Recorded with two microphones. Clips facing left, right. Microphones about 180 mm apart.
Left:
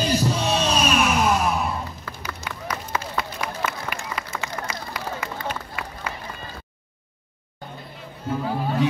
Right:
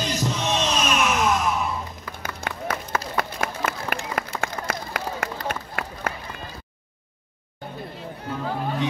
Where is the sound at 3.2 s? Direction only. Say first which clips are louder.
Right 2 dB; 50° right (ahead or behind).